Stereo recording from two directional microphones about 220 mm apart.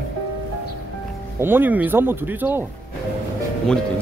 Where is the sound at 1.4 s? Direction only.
10° right (ahead or behind).